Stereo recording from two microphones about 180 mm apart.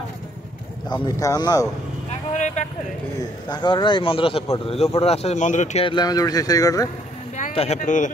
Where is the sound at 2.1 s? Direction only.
40° left (ahead or behind).